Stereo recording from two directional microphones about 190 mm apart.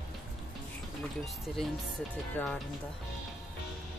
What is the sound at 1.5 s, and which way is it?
Speech, 5° left (ahead or behind).